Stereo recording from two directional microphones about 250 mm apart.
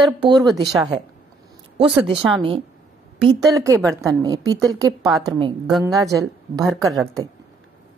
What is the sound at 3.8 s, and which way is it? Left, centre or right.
A woman's voice, centre.